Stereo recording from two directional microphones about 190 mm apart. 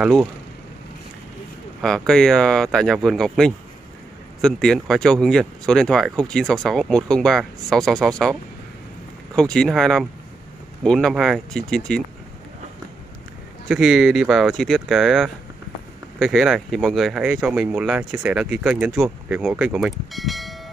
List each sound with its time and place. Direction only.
0.0 s speech: centre (ahead or behind)
1.8 s speech: centre (ahead or behind)
13.7 s speech: centre (ahead or behind)